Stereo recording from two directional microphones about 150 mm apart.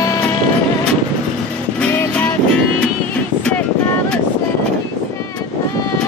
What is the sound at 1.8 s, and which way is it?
Music, 10° left (ahead or behind).